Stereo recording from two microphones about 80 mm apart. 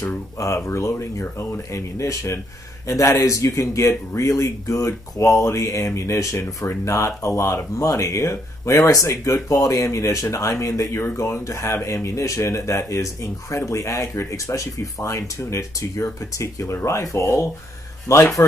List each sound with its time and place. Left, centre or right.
0.4 s speech: left